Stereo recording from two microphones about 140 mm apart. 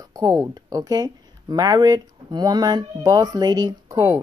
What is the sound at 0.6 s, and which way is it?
Speech, 25° right (ahead or behind).